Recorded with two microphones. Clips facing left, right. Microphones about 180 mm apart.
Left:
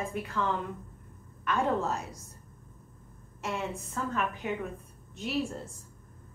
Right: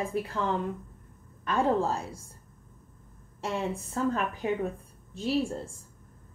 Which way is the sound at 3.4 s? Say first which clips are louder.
Right 3 dB; 30° right (ahead or behind).